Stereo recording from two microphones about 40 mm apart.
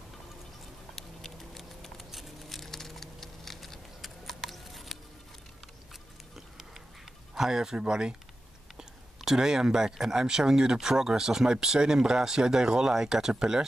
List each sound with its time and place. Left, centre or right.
0.9 s patter: centre
2.0 s a sound: centre
7.3 s speech: centre
8.7 s speech: centre